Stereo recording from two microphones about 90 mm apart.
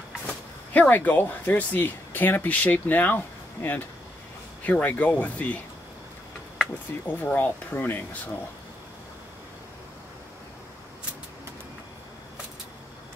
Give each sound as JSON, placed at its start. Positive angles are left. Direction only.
{"t": 0.3, "sound": "speech", "side_deg": 15}
{"t": 7.1, "sound": "speech", "side_deg": 20}